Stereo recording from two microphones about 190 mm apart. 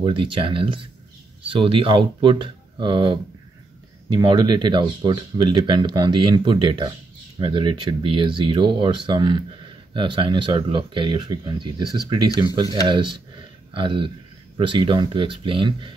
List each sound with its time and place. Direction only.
0.0 s speech: 25° right (ahead or behind)